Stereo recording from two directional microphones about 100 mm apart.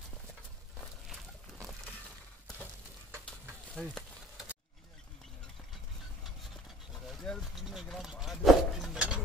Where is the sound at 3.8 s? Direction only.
5° left (ahead or behind).